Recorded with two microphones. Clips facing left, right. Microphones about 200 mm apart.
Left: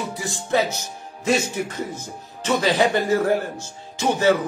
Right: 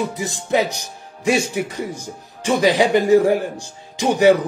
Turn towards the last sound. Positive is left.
turn(degrees=-15)  # may be behind; listen again after turning